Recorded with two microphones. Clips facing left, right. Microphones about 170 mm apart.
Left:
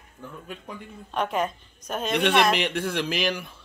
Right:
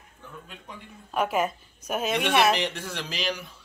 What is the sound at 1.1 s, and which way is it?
A woman's voice, 5° right (ahead or behind).